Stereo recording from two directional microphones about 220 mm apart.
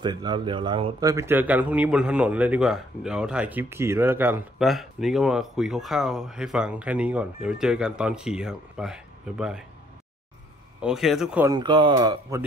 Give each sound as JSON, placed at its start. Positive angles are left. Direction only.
{"t": 0.0, "sound": "a man's voice", "side_deg": -20}
{"t": 1.1, "sound": "speech", "side_deg": -10}
{"t": 10.8, "sound": "speech", "side_deg": 0}
{"t": 11.4, "sound": "speech", "side_deg": -20}